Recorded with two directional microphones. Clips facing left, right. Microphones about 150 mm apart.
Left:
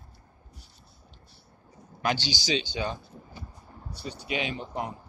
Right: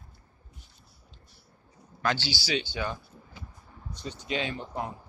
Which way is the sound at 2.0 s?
15° left (ahead or behind).